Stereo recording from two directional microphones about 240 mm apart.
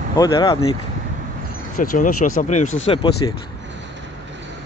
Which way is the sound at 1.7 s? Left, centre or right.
Left.